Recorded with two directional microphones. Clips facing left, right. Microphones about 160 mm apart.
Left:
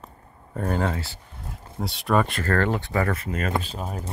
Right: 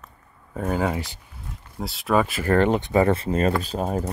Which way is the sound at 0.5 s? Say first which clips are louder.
Right 2 dB; 5° right (ahead or behind).